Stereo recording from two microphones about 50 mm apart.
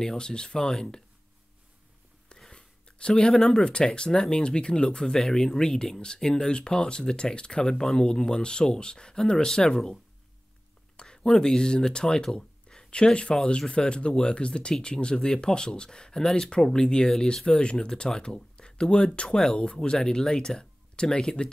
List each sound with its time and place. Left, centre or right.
0.0 s speech: centre
2.2 s speech: centre
11.0 s speech: centre